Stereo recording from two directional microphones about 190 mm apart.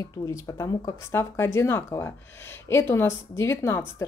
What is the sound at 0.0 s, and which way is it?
Speech, 20° left (ahead or behind).